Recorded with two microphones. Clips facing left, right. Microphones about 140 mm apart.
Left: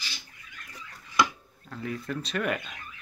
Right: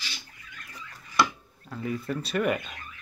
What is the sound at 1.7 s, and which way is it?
Speech, 5° right (ahead or behind).